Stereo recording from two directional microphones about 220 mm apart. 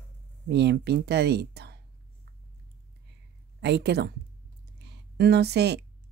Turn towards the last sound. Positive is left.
turn(degrees=-50)  # may be behind; listen again after turning